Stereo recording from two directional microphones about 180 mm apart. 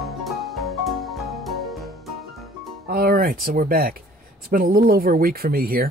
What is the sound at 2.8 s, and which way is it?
Music, 55° right (ahead or behind).